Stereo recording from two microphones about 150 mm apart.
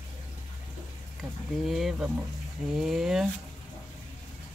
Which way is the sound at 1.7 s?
Centre (ahead or behind).